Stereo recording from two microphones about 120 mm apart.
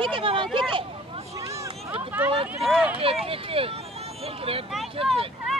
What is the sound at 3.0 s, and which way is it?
Speech, 50° right (ahead or behind).